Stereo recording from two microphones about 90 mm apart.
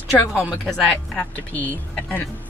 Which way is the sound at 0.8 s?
10° left (ahead or behind).